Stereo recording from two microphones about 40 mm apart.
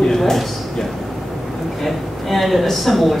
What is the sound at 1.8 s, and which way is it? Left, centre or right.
Speech, centre.